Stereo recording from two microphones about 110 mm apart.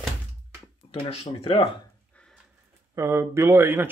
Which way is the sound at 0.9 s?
60° left (ahead or behind).